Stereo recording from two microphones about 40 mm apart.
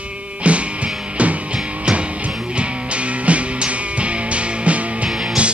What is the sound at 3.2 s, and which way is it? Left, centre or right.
Music, right.